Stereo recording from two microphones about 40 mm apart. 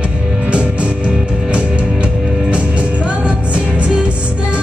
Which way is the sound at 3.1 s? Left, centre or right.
Right.